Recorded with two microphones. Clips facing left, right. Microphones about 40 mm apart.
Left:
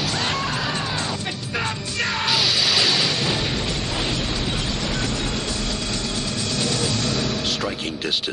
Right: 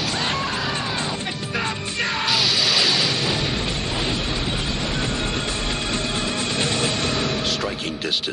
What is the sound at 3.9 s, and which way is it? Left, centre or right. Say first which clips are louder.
Train: even; centre.